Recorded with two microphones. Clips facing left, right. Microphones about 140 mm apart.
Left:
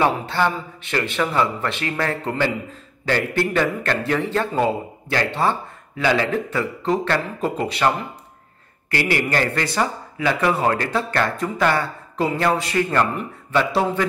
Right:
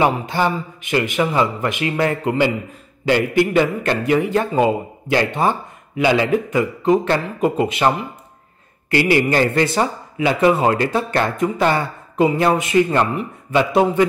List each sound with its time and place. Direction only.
0.0 s a man's voice: 15° right (ahead or behind)
8.9 s a man's voice: 20° right (ahead or behind)